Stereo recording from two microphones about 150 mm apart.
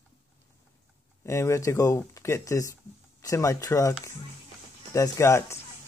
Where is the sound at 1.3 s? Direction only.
20° left (ahead or behind).